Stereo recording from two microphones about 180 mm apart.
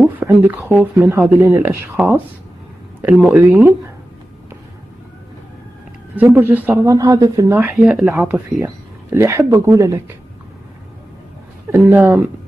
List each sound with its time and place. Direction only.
0.0 s speech: 10° right (ahead or behind)
6.1 s speech: 10° right (ahead or behind)
7.7 s speech: 5° right (ahead or behind)
8.5 s speech: 15° right (ahead or behind)
11.7 s speech: 15° right (ahead or behind)